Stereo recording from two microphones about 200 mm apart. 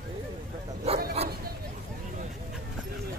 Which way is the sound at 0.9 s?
30° right (ahead or behind).